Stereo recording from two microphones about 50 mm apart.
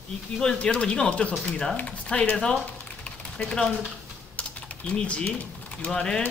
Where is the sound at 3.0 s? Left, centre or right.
Left.